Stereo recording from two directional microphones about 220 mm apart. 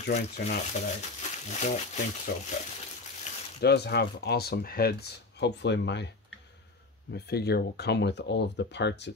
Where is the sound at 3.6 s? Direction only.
50° left (ahead or behind).